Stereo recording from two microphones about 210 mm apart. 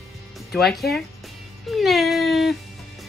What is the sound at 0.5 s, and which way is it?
A woman's voice, centre (ahead or behind).